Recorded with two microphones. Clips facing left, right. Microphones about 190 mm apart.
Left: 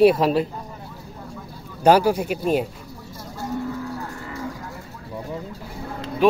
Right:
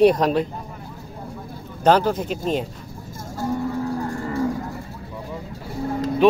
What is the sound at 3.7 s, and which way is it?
Vehicle, 45° right (ahead or behind).